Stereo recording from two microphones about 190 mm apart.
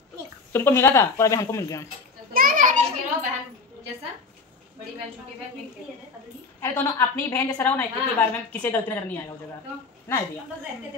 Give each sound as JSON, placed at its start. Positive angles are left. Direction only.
{"t": 0.5, "sound": "speech", "side_deg": 10}
{"t": 2.3, "sound": "a sound", "side_deg": -45}
{"t": 6.6, "sound": "speech", "side_deg": 15}